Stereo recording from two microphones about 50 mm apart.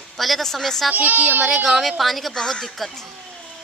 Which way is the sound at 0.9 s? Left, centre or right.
Right.